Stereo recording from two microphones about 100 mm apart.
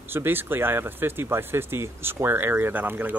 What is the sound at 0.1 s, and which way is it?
Speech, 20° right (ahead or behind).